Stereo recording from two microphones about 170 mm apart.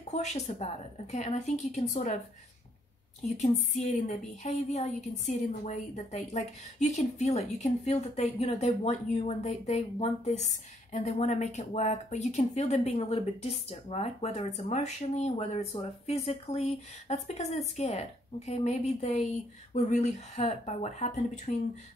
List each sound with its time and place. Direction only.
0.1 s a woman's voice: 40° left (ahead or behind)
3.2 s a woman's voice: 40° left (ahead or behind)